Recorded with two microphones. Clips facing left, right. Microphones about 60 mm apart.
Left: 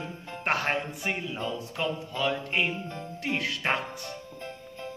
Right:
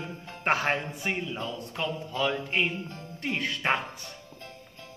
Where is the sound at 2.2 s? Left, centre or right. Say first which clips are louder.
Right 1 dB; centre.